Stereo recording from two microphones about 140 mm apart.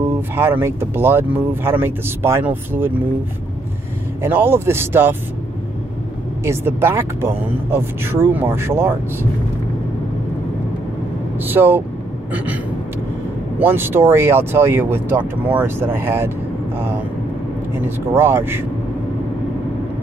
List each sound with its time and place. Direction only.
0.4 s speech: 15° right (ahead or behind)
4.2 s speech: 15° right (ahead or behind)
6.4 s speech: 15° right (ahead or behind)
11.4 s speech: 15° right (ahead or behind)
13.6 s speech: 15° right (ahead or behind)
17.8 s speech: 15° right (ahead or behind)